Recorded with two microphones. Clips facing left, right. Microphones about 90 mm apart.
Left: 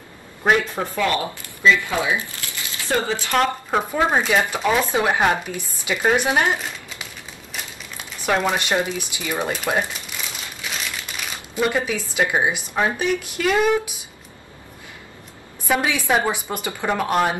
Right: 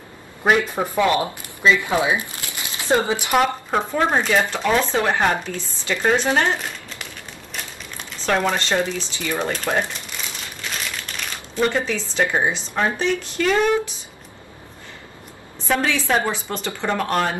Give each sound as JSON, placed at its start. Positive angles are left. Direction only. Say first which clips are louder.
{"t": 0.4, "sound": "speech", "louder": "right 1 dB", "side_deg": -5}
{"t": 0.9, "sound": "speech", "louder": "right 4 dB", "side_deg": -20}
{"t": 3.7, "sound": "speech", "louder": "left 1 dB", "side_deg": 5}
{"t": 6.6, "sound": "crumpling", "louder": "even", "side_deg": 5}
{"t": 8.5, "sound": "speech", "louder": "even", "side_deg": 15}
{"t": 10.6, "sound": "crumpling", "louder": "even", "side_deg": 5}
{"t": 12.1, "sound": "speech", "louder": "even", "side_deg": 10}
{"t": 15.6, "sound": "speech", "louder": "even", "side_deg": 10}